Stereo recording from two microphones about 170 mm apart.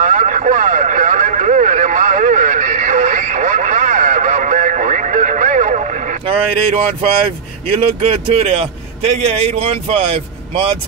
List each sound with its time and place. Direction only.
0.0 s vehicle: 50° right (ahead or behind)
6.2 s a sound: 35° right (ahead or behind)
8.1 s a man's voice: 40° right (ahead or behind)